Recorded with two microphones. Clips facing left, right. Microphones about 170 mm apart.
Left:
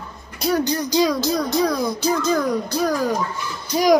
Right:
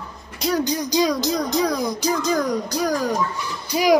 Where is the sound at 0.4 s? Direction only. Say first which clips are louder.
Left 1 dB; 15° right (ahead or behind).